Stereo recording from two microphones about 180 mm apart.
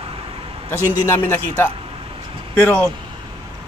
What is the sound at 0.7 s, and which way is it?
Speech, 15° left (ahead or behind).